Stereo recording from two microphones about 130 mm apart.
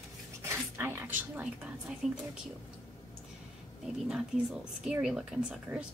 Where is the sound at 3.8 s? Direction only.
5° right (ahead or behind).